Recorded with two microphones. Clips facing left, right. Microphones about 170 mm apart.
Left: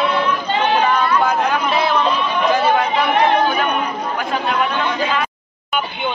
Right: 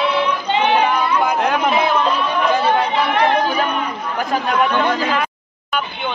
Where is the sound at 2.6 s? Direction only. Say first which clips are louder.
Left 1 dB; 30° right (ahead or behind).